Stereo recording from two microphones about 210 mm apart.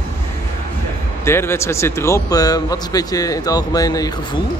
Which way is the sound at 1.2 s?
10° left (ahead or behind).